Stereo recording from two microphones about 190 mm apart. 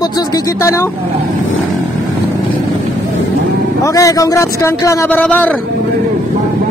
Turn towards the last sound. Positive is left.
turn(degrees=10)  # may be behind; listen again after turning